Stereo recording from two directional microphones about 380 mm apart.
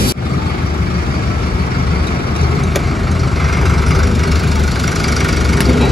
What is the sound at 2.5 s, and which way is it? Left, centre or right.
Vehicle, centre.